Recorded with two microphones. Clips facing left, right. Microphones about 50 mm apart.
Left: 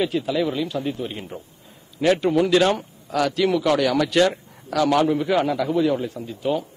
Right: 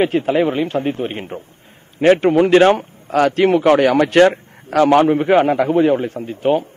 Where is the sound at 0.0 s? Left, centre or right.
Right.